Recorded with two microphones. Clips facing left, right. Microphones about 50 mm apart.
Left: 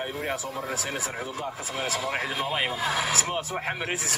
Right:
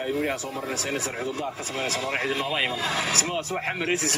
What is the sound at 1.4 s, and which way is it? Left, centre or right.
Speech, right.